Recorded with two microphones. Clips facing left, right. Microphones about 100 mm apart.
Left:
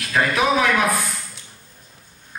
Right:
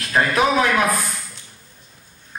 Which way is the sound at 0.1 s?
35° right (ahead or behind).